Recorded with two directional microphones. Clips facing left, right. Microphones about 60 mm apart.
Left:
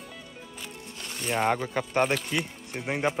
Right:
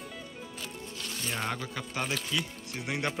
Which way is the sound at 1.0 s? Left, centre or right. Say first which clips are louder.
Left 8 dB; left.